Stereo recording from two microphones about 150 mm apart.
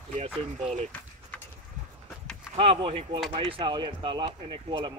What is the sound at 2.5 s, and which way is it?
Speech, 40° right (ahead or behind).